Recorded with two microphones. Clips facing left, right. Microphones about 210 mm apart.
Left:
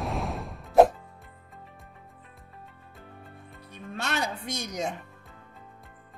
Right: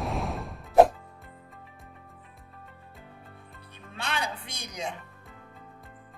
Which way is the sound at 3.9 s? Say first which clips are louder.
Left 2 dB; 45° left (ahead or behind).